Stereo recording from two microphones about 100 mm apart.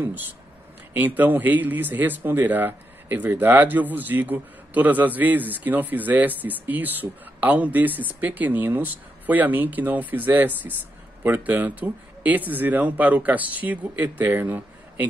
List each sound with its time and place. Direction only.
0.9 s speech: 15° right (ahead or behind)